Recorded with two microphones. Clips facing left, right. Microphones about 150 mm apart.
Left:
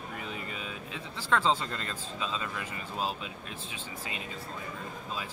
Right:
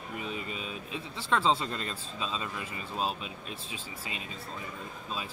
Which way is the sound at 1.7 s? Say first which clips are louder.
Right 1 dB; 15° right (ahead or behind).